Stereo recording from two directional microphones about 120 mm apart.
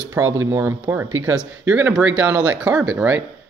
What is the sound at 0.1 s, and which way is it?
Speech, 25° right (ahead or behind).